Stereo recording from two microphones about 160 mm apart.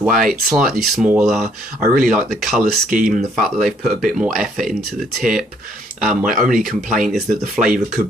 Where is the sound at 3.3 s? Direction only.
Centre (ahead or behind).